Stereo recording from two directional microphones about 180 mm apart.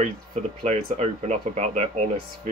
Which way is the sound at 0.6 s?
40° right (ahead or behind).